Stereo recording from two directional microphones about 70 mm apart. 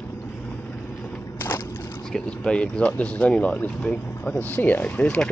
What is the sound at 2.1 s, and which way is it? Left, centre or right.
Speech, centre.